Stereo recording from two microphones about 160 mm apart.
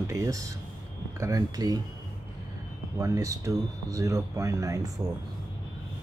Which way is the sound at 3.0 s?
20° right (ahead or behind).